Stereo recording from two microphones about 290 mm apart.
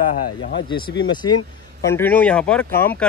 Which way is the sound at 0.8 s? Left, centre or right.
Left.